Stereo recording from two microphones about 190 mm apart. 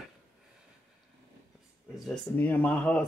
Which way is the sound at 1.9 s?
5° left (ahead or behind).